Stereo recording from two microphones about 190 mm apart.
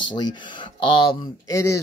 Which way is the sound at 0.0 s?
25° left (ahead or behind).